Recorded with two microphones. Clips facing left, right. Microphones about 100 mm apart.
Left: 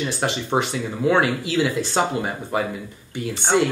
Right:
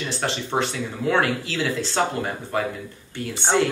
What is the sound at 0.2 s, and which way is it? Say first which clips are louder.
Speech: left 1 dB; 15° left (ahead or behind).